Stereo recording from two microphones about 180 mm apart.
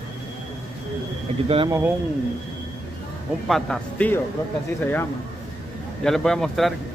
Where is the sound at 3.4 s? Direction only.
Centre (ahead or behind).